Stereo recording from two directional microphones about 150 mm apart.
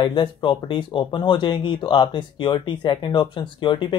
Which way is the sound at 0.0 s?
30° left (ahead or behind).